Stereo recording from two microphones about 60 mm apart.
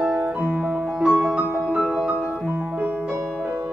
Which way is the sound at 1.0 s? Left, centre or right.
Centre.